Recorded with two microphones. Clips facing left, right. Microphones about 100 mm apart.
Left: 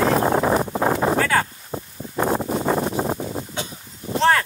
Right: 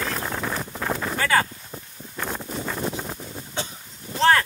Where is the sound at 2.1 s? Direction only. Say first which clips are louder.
Left 9 dB; 40° left (ahead or behind).